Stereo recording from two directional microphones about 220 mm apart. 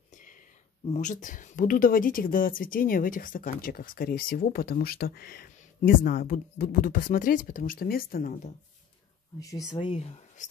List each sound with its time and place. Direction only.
0.1 s a sound: 35° left (ahead or behind)
0.8 s speech: 30° left (ahead or behind)
9.4 s speech: 15° left (ahead or behind)
9.7 s speech: 25° left (ahead or behind)